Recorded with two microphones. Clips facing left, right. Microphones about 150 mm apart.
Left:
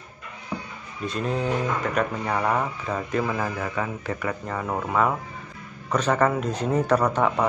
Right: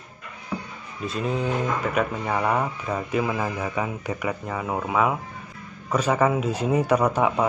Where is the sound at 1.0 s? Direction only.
Centre (ahead or behind).